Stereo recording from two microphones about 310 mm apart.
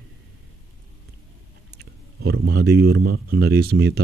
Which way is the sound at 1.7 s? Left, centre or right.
Right.